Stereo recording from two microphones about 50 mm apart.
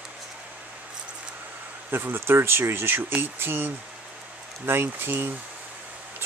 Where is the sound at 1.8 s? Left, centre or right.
Right.